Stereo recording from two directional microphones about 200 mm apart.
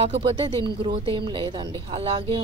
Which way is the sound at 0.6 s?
25° right (ahead or behind).